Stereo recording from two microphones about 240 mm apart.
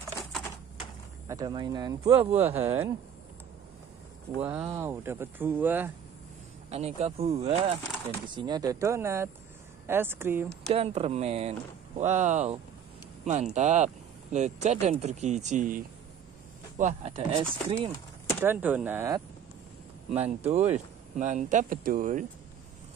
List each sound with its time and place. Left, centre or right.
1.3 s speech: centre
4.4 s speech: centre
6.7 s speech: right; by 10.5 s centre
10.7 s speech: right
18.4 s speech: centre
20.1 s speech: right